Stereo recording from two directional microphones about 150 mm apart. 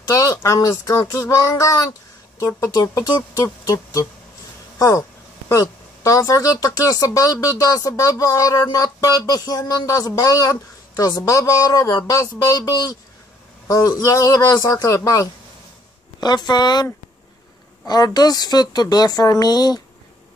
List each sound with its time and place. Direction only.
0.1 s speech: 20° left (ahead or behind)